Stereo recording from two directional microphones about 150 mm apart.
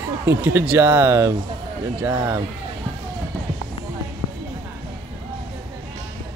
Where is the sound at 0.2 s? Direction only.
15° right (ahead or behind).